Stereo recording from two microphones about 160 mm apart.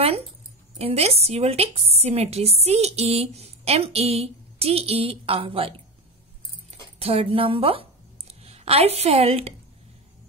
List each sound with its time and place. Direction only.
0.7 s a woman's voice: 40° right (ahead or behind)